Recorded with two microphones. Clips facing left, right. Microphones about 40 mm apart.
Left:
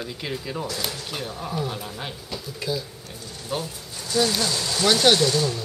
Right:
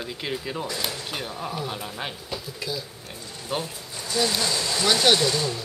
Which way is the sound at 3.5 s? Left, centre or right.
Centre.